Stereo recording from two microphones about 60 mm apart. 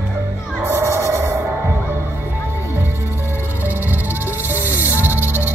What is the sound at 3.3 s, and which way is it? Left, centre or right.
Music, right.